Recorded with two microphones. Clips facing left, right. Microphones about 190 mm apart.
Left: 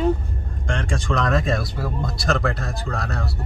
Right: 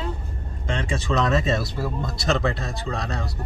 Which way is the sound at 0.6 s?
5° right (ahead or behind).